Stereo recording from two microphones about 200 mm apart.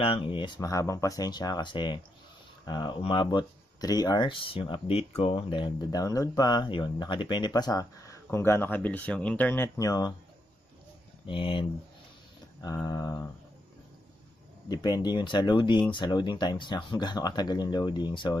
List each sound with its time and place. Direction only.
0.0 s speech: 25° left (ahead or behind)
11.2 s speech: 25° left (ahead or behind)
12.6 s a sound: 15° left (ahead or behind)
14.7 s speech: 20° left (ahead or behind)